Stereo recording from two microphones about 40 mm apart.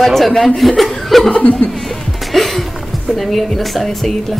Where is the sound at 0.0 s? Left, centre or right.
Centre.